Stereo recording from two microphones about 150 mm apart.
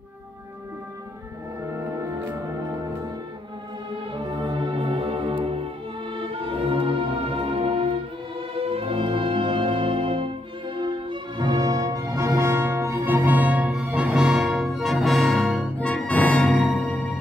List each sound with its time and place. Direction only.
4.4 s music: 30° right (ahead or behind); by 17.1 s 5° left (ahead or behind)